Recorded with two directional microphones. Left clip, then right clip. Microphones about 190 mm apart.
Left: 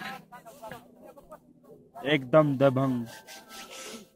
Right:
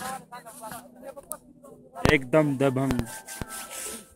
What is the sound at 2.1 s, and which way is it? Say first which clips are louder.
Rub: left 1 dB; 45° left (ahead or behind).